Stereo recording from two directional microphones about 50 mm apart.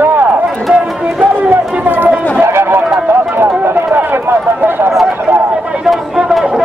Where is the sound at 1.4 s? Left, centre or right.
Right.